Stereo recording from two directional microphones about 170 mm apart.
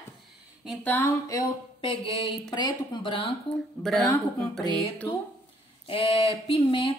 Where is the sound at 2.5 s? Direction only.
25° left (ahead or behind).